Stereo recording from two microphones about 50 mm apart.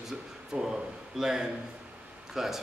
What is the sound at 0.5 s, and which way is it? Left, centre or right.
A man's voice, centre.